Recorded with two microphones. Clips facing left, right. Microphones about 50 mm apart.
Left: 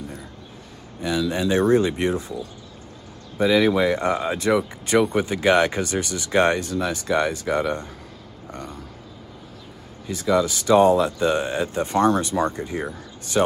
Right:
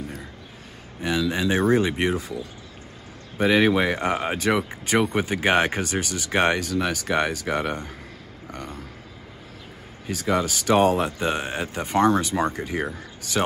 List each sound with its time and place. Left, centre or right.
1.3 s speech: right
1.9 s speech: right
3.3 s speech: right
8.5 s a sound: right
10.0 s speech: right